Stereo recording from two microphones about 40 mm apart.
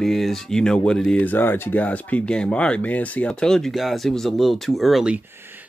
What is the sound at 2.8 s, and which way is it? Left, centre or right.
Speech, left.